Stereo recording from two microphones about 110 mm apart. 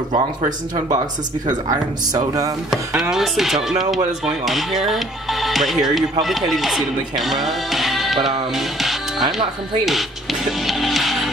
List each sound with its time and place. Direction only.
1.7 s speech: 35° right (ahead or behind)
3.0 s speech: 5° right (ahead or behind)
9.8 s music: centre (ahead or behind)